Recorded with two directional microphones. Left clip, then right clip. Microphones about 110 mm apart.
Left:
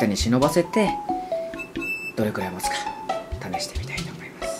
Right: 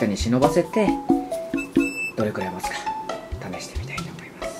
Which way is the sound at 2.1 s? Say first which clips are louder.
Right 1 dB; 30° left (ahead or behind).